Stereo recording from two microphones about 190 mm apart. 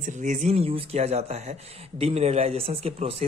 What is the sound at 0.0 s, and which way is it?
Speech, 40° right (ahead or behind).